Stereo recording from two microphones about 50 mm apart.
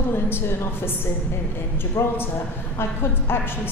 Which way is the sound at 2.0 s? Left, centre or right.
Left.